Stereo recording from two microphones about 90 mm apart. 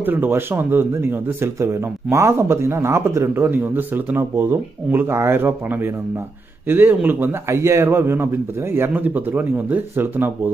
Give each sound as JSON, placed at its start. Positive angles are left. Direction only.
{"t": 0.0, "sound": "speech", "side_deg": -20}